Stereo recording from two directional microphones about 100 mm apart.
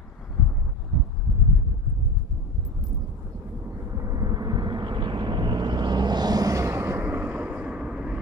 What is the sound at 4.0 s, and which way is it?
Vehicle, 35° right (ahead or behind).